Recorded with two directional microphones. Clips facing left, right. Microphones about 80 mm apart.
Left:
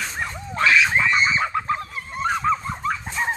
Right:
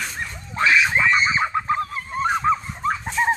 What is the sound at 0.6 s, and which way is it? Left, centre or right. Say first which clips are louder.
Screaming: even; centre.